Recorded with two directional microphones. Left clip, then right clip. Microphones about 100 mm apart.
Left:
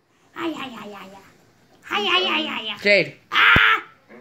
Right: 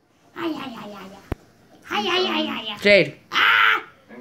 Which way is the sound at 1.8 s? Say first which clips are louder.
Left 2 dB; 45° right (ahead or behind).